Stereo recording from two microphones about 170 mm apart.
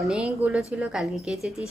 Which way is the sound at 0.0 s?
5° right (ahead or behind).